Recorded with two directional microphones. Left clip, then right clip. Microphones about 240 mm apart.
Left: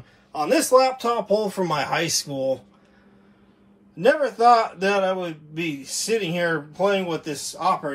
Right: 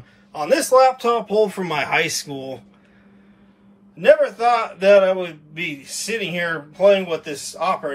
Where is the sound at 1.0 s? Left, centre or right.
Centre.